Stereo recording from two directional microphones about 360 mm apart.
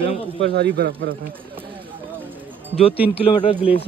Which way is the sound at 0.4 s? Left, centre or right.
Right.